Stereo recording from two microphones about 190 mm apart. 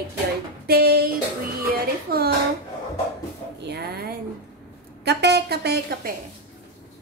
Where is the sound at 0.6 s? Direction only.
55° right (ahead or behind).